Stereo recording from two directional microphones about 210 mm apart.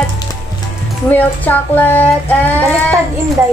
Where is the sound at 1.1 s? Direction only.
10° left (ahead or behind).